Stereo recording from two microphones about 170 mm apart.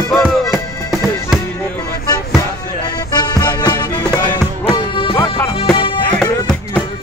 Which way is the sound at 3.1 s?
25° left (ahead or behind).